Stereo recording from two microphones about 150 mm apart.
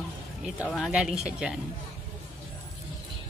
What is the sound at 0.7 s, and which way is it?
Speech, centre (ahead or behind).